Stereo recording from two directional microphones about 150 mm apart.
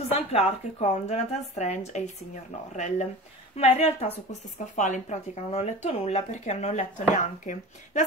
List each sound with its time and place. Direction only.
0.1 s speech: 45° left (ahead or behind)